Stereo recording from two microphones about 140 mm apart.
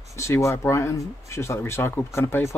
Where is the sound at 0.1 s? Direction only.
20° left (ahead or behind).